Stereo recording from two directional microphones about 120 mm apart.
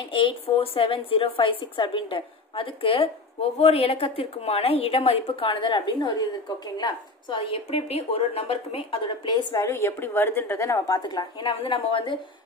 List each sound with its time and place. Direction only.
0.1 s a woman's voice: 45° left (ahead or behind)
9.3 s a woman's voice: 35° left (ahead or behind)
9.7 s a woman's voice: 20° left (ahead or behind)
11.0 s a woman's voice: 35° left (ahead or behind)